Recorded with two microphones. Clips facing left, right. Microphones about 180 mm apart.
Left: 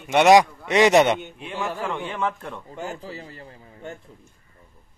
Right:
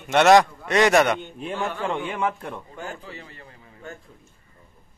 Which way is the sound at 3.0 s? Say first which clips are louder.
Left 4 dB; 35° left (ahead or behind).